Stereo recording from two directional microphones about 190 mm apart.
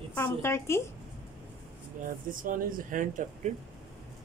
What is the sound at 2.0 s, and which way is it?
Speech, 45° right (ahead or behind).